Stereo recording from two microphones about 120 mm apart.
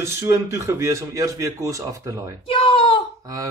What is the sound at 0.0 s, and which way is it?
Speech, 25° right (ahead or behind).